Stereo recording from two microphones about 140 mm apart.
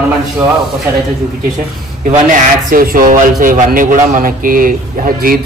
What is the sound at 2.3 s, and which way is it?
Speech, 80° right.